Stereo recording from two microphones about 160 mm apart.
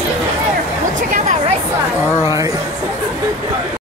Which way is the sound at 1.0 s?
55° right (ahead or behind).